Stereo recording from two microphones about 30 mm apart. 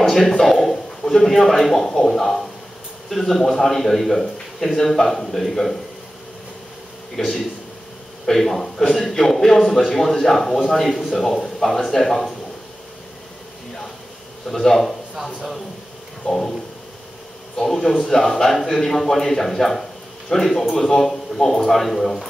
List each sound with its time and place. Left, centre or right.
0.0 s a man's voice: centre
7.2 s a man's voice: centre
14.5 s a man's voice: centre
16.3 s a man's voice: centre
17.6 s a man's voice: centre